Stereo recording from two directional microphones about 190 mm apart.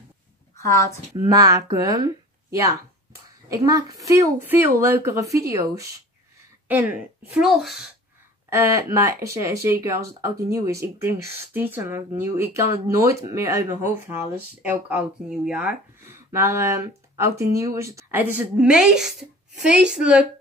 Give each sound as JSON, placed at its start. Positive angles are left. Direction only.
{"t": 0.6, "sound": "a woman's voice", "side_deg": 15}
{"t": 1.1, "sound": "speech", "side_deg": -15}
{"t": 8.5, "sound": "speech", "side_deg": -15}